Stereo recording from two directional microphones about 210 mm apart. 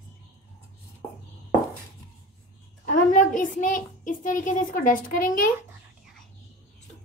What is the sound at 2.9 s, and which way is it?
A child's voice, 40° left (ahead or behind).